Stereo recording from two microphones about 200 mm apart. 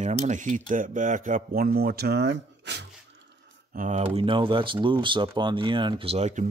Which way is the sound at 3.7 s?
35° right (ahead or behind).